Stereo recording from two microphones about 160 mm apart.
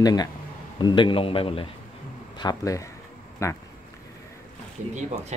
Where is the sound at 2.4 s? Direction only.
25° left (ahead or behind).